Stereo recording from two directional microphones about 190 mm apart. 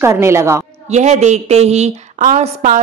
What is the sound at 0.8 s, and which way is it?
A woman's voice, 35° right (ahead or behind).